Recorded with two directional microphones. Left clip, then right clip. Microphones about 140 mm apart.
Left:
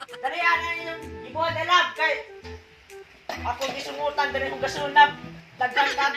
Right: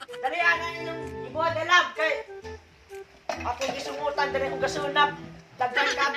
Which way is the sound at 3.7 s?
15° right (ahead or behind).